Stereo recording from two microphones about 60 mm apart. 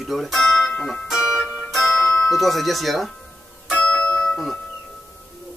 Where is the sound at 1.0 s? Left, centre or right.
Centre.